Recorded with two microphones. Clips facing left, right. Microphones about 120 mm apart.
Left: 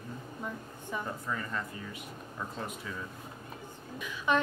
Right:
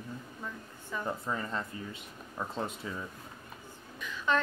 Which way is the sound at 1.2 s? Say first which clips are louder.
Right 1 dB; 25° right (ahead or behind).